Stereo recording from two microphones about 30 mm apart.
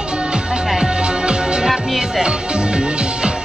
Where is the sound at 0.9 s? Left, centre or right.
Right.